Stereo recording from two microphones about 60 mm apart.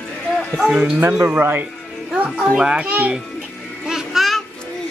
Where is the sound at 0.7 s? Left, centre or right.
Right.